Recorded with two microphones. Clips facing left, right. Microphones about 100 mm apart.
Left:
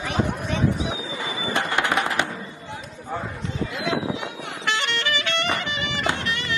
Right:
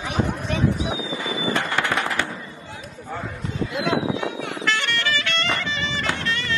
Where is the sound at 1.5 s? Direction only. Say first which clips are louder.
Left 3 dB; 20° left (ahead or behind).